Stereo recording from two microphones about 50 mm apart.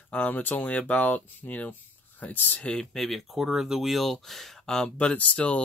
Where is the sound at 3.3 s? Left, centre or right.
Centre.